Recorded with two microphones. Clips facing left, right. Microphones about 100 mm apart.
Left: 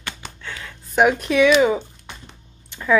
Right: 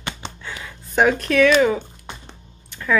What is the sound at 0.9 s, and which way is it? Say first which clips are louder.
Speech: even; 10° left (ahead or behind).